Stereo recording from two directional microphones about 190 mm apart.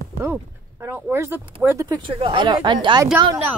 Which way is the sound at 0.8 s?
10° right (ahead or behind).